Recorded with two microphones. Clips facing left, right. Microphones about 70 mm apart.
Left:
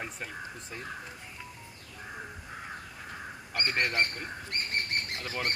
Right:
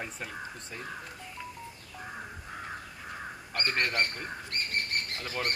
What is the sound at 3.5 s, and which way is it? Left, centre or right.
Speech, left.